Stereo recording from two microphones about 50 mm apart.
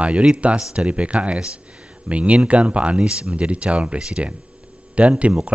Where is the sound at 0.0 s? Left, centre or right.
Right.